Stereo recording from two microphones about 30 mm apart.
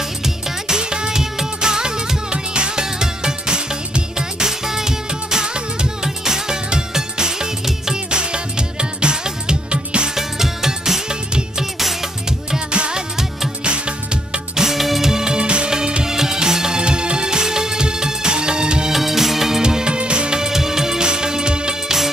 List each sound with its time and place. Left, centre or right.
0.2 s music: right
4.5 s music: centre
10.1 s music: centre
12.7 s music: right
14.5 s music: centre
14.8 s music: centre
15.0 s music: right
18.9 s music: centre
19.6 s music: right
20.3 s music: centre